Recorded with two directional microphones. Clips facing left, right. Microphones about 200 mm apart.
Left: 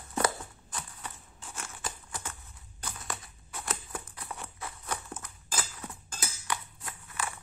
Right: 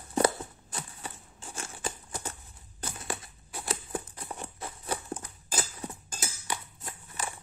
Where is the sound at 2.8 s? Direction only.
30° right (ahead or behind).